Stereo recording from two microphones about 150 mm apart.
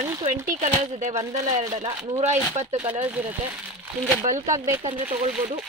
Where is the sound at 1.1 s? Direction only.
25° right (ahead or behind).